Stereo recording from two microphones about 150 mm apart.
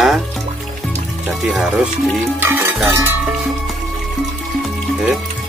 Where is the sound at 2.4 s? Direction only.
15° right (ahead or behind).